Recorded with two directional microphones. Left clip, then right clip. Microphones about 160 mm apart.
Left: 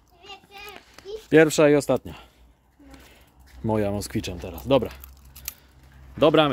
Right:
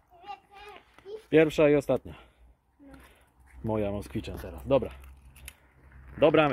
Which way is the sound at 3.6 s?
30° left (ahead or behind).